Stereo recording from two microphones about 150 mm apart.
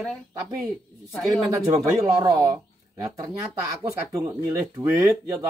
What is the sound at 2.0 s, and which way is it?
Speech, 25° right (ahead or behind).